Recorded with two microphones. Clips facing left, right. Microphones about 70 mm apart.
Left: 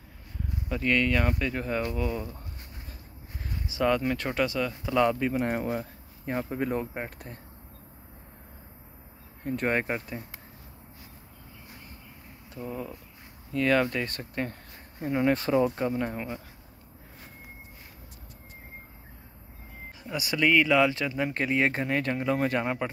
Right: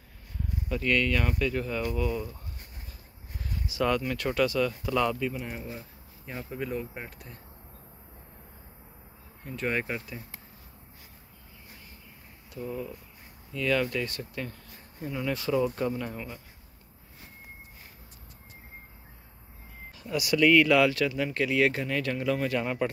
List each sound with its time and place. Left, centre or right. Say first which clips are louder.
0.7 s speech: left 1 dB; left
3.4 s a sound: even; left
4.0 s speech: even; left
5.3 s speech: left 9 dB; left
9.4 s speech: left 3 dB; left
12.5 s speech: right 1 dB; left
20.2 s speech: right 2 dB; left